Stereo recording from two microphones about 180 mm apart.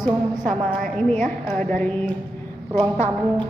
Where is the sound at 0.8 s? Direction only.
5° left (ahead or behind).